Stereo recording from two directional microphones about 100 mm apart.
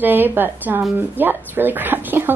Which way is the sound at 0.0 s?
20° right (ahead or behind).